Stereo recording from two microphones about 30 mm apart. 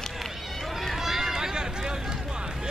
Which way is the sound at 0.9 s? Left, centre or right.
Centre.